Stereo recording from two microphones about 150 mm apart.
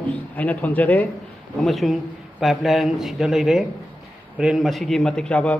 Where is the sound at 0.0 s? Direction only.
10° left (ahead or behind).